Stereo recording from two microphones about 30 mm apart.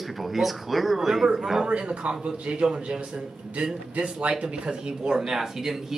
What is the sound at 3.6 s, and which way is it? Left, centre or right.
Speech, right.